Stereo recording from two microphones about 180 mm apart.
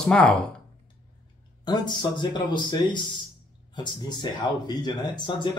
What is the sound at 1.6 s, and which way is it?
A man's voice, 25° left (ahead or behind).